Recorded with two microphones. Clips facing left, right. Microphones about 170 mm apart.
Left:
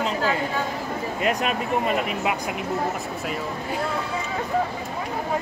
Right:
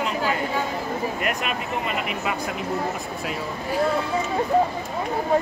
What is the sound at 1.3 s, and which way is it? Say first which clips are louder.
Speech: left 3 dB; 35° left (ahead or behind).